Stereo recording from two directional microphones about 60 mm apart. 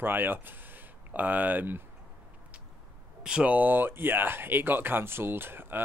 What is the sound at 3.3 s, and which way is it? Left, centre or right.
Speech, centre.